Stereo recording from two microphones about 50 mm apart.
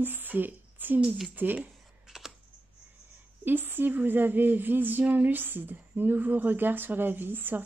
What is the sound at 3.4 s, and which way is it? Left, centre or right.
A woman's voice, right.